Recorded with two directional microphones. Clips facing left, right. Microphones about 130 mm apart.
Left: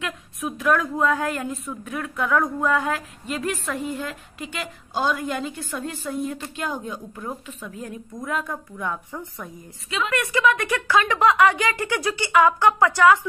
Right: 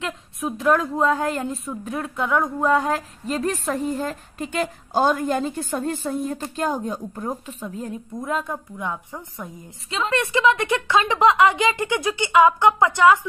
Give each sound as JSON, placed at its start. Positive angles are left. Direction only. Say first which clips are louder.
{"t": 0.0, "sound": "a woman's voice", "louder": "right 2 dB", "side_deg": -30}
{"t": 9.8, "sound": "a woman's voice", "louder": "right 2 dB", "side_deg": -30}